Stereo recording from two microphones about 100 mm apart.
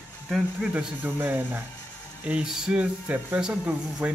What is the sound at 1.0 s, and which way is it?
Speech, 20° right (ahead or behind).